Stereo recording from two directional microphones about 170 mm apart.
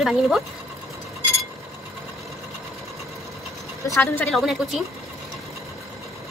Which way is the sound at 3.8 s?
15° left (ahead or behind).